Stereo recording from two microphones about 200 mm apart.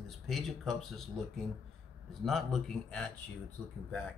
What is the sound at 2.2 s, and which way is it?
Speech, centre (ahead or behind).